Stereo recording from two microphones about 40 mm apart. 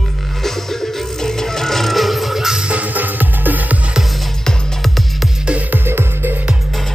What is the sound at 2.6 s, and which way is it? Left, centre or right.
Music, right.